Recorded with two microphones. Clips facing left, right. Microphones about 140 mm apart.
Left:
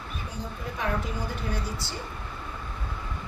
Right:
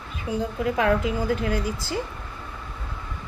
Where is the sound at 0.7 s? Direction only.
90° right.